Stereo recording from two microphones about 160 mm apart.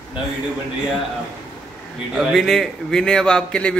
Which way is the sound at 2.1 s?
Centre (ahead or behind).